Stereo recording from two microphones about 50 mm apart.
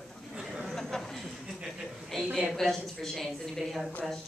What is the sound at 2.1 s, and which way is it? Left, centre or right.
A woman's voice, centre.